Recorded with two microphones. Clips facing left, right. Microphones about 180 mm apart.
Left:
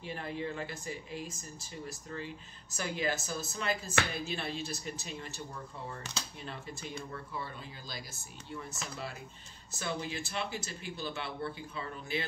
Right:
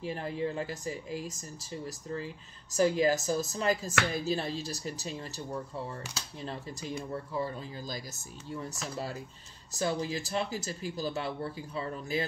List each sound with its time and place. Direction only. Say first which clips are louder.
0.0 s speech: right 5 dB; 35° right (ahead or behind)
9.7 s speech: right 6 dB; 35° right (ahead or behind)